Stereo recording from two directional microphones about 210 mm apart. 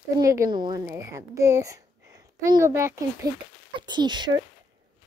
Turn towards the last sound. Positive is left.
turn(degrees=-20)  # may be behind; listen again after turning